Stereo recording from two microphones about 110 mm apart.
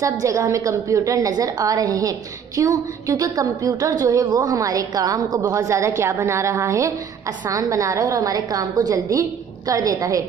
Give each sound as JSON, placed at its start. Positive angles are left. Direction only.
{"t": 0.0, "sound": "a woman's voice", "side_deg": -30}